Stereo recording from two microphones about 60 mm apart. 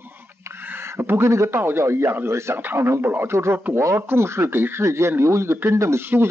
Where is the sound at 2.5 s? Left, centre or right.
Right.